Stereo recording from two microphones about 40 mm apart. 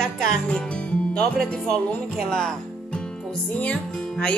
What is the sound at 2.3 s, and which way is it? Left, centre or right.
Music, centre.